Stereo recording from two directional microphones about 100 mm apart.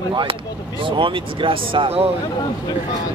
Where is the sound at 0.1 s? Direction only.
55° right (ahead or behind).